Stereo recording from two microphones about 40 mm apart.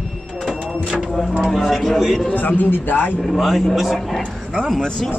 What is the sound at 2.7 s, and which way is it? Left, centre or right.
Speech, left.